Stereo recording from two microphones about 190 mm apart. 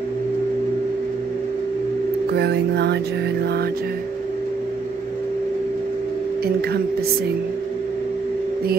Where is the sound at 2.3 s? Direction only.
60° right (ahead or behind).